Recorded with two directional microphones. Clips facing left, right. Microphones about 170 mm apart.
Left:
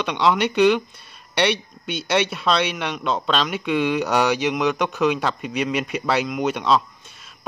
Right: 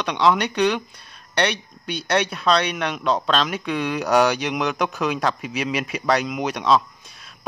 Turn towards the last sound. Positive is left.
turn(degrees=0)  # may be behind; listen again after turning